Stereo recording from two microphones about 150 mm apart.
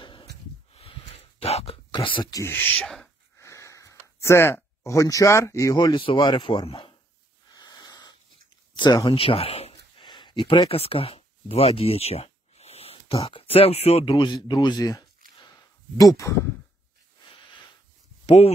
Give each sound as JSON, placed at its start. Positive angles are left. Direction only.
{"t": 0.0, "sound": "a sound", "side_deg": 35}
{"t": 0.7, "sound": "dog", "side_deg": 45}
{"t": 2.0, "sound": "speech", "side_deg": 35}
{"t": 2.4, "sound": "speech", "side_deg": 15}
{"t": 3.3, "sound": "speech", "side_deg": 20}
{"t": 7.5, "sound": "wheeze", "side_deg": 25}
{"t": 8.7, "sound": "speech", "side_deg": 30}
{"t": 9.9, "sound": "speech", "side_deg": 30}
{"t": 18.2, "sound": "a sound", "side_deg": 40}